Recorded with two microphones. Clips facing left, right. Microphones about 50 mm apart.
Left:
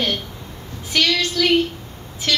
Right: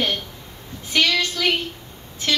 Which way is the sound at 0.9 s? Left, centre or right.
Right.